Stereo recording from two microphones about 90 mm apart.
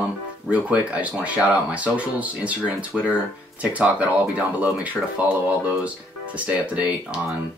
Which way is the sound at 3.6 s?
15° right (ahead or behind).